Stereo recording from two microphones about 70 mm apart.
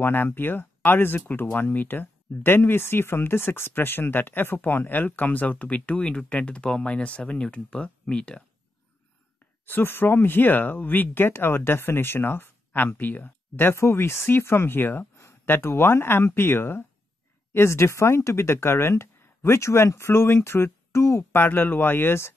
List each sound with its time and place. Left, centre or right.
0.0 s speech: left; by 8.5 s centre
9.7 s speech: left
21.3 s speech: left